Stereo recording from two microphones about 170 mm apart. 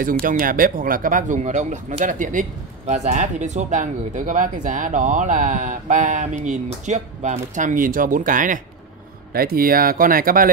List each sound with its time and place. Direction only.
0.0 s speech: 55° right (ahead or behind)
9.3 s speech: 60° right (ahead or behind)